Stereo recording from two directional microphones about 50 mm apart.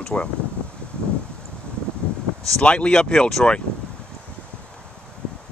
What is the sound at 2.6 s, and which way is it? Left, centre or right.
Speech, left.